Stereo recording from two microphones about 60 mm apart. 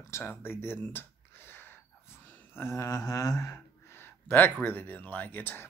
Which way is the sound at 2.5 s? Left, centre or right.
Left.